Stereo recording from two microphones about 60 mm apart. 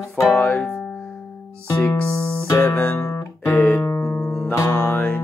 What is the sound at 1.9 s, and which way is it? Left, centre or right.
Music, left.